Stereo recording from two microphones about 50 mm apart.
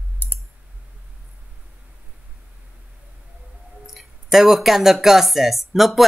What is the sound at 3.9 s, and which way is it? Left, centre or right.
Speech, centre.